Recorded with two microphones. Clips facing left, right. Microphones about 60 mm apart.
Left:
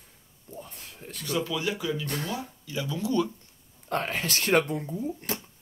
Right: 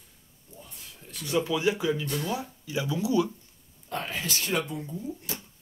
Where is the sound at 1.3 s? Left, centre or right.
Centre.